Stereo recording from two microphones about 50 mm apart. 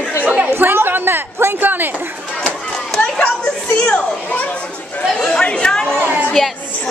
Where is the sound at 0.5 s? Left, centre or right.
Right.